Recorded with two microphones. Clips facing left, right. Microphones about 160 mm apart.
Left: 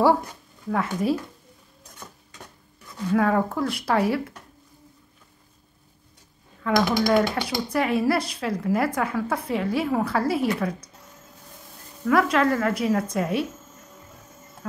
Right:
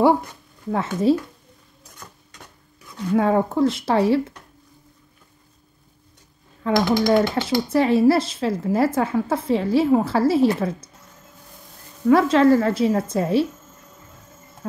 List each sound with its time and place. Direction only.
0.7 s a woman's voice: 25° right (ahead or behind)
3.2 s a woman's voice: 25° right (ahead or behind)
6.6 s a woman's voice: 25° right (ahead or behind)
12.1 s a woman's voice: 30° right (ahead or behind)